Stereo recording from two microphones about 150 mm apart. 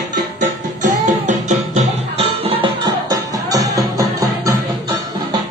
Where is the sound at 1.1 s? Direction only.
50° right (ahead or behind); by 4.5 s 25° right (ahead or behind).